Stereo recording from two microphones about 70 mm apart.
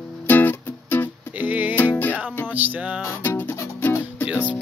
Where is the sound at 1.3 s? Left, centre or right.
Right.